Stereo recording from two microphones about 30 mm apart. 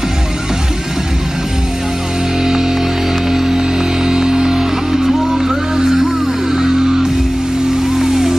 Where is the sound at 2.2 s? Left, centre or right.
Right.